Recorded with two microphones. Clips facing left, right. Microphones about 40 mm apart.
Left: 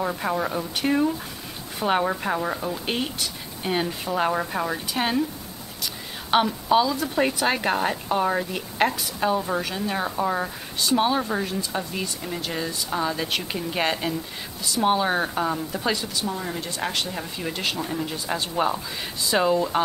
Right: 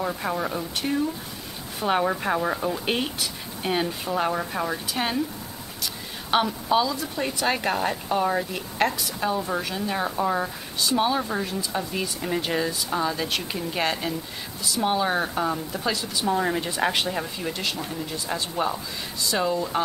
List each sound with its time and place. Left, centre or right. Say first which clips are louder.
0.0 s a woman's voice: left 2 dB; centre
6.3 s a woman's voice: left 2 dB; centre
12.2 s speech: right 4 dB; centre
12.5 s speech: right 2 dB; centre
13.0 s speech: left 2 dB; centre
16.3 s a woman's voice: right 5 dB; right
17.4 s speech: left 1 dB; centre